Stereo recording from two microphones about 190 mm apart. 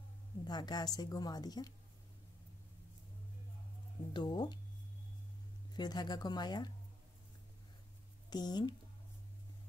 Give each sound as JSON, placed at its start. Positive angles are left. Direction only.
{"t": 0.5, "sound": "a woman's voice", "side_deg": 20}
{"t": 4.1, "sound": "a woman's voice", "side_deg": 25}
{"t": 5.7, "sound": "a woman's voice", "side_deg": 20}
{"t": 8.3, "sound": "a woman's voice", "side_deg": 20}